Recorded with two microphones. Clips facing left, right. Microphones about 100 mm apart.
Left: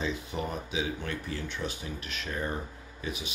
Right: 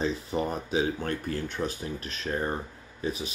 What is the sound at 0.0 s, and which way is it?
Speech, 35° right (ahead or behind).